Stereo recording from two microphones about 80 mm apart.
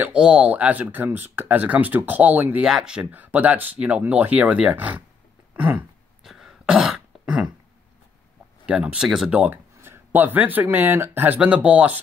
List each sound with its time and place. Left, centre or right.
0.0 s speech: centre
2.6 s speech: centre
6.2 s throat clearing: centre
8.6 s speech: centre
9.4 s speech: right